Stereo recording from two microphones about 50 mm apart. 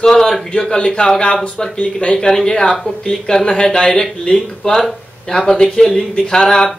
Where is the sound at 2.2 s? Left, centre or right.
Centre.